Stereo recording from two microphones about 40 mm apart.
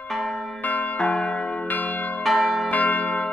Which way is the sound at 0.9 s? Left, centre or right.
Left.